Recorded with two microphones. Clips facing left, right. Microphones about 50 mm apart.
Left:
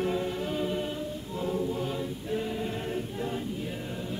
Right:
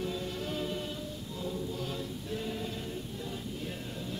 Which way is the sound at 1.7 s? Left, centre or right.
Left.